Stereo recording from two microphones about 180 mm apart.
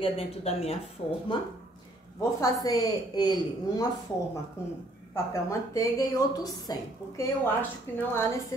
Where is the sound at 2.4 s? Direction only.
20° left (ahead or behind).